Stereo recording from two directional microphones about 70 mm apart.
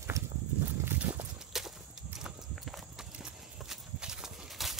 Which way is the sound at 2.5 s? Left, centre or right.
Centre.